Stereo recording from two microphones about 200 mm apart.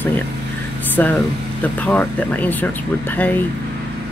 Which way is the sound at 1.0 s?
10° left (ahead or behind).